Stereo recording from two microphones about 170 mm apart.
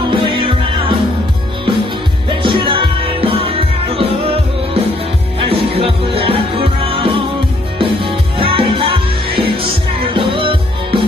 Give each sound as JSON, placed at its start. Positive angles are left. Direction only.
{"t": 0.1, "sound": "music", "side_deg": -30}
{"t": 2.2, "sound": "music", "side_deg": -30}
{"t": 5.5, "sound": "music", "side_deg": -35}